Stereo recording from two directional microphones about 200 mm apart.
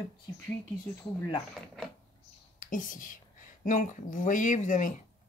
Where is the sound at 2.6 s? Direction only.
40° left (ahead or behind).